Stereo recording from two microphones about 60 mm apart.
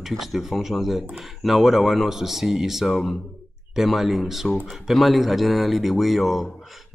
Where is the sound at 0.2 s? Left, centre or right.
Centre.